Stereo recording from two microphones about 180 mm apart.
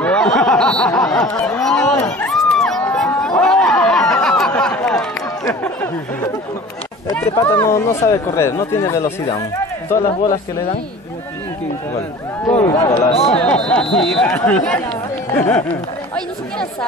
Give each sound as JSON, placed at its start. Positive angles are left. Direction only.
{"t": 0.0, "sound": "a sound", "side_deg": 5}
{"t": 2.0, "sound": "chatter", "side_deg": 10}
{"t": 4.6, "sound": "a sound", "side_deg": 5}
{"t": 5.5, "sound": "speech", "side_deg": 10}
{"t": 7.3, "sound": "speech", "side_deg": 15}
{"t": 12.4, "sound": "speech", "side_deg": 10}
{"t": 13.1, "sound": "speech", "side_deg": 35}
{"t": 13.4, "sound": "speech", "side_deg": 5}